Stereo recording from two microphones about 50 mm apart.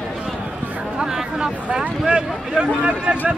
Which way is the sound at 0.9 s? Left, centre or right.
Centre.